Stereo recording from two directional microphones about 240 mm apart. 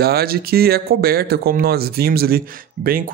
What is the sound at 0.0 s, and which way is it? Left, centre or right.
Speech, right.